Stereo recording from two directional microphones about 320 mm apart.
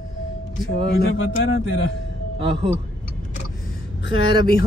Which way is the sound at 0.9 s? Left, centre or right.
Left.